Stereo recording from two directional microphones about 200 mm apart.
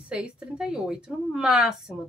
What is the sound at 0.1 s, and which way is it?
A woman's voice, 5° right (ahead or behind).